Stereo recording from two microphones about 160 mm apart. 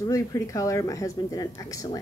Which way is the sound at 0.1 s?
20° left (ahead or behind).